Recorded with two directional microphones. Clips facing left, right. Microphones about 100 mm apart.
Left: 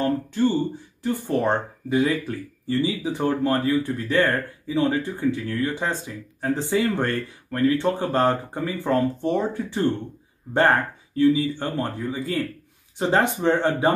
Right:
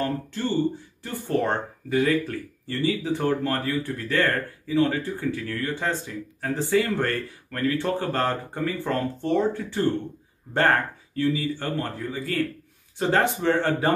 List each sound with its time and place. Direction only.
0.0 s speech: 15° left (ahead or behind)